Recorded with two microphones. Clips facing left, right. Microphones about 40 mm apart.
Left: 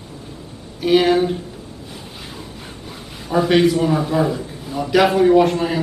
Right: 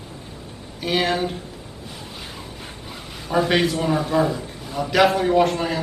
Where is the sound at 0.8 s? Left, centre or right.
Centre.